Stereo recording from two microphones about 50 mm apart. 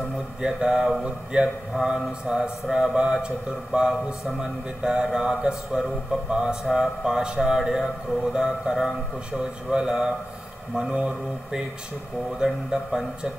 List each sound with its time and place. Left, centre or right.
0.4 s a man's voice: centre
0.7 s speech: centre
1.0 s a man's voice: centre
1.7 s speech: centre